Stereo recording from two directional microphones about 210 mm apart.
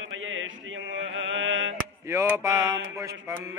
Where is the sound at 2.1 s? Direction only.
15° right (ahead or behind).